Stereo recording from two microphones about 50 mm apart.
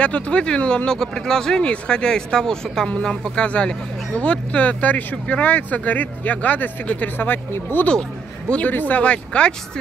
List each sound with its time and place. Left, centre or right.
0.0 s speech: left
0.8 s speech: centre; by 7.8 s left
8.5 s speech: left